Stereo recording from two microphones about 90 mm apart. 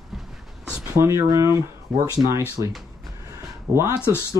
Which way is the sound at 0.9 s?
30° right (ahead or behind).